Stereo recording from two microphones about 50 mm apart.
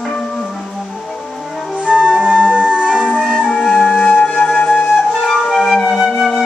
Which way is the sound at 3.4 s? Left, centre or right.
Centre.